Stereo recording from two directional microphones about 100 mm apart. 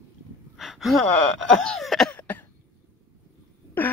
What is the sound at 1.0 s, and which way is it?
Speech, 10° left (ahead or behind).